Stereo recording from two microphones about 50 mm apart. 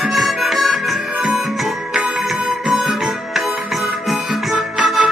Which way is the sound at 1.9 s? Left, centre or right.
Centre.